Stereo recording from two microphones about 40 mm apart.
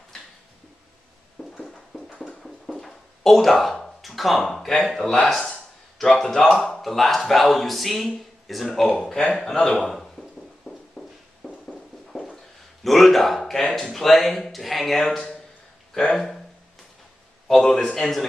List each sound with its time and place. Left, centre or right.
1.6 s a sound: centre
4.0 s speech: centre
6.2 s speech: centre
6.5 s speech: centre
11.0 s walk: centre
12.8 s speech: centre
17.5 s speech: centre